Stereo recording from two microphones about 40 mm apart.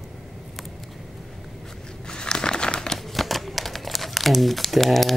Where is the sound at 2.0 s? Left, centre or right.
Centre.